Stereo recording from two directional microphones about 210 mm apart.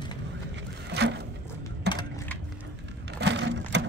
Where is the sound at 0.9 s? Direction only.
55° right (ahead or behind).